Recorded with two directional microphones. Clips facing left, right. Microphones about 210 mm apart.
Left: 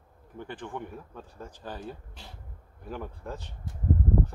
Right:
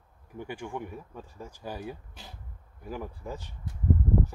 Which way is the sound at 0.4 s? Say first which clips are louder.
Right 1 dB; 10° right (ahead or behind).